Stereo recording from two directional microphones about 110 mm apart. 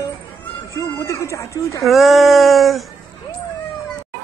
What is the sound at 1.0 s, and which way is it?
Speech, 25° left (ahead or behind).